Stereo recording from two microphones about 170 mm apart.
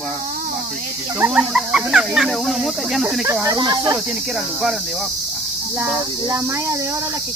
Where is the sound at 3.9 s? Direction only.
Centre (ahead or behind).